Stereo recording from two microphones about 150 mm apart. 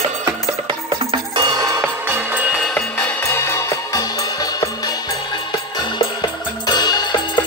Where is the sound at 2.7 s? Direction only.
10° left (ahead or behind).